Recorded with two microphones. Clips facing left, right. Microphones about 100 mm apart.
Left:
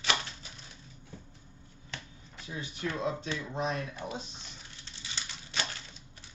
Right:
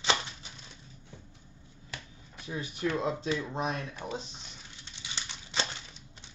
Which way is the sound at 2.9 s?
20° right (ahead or behind).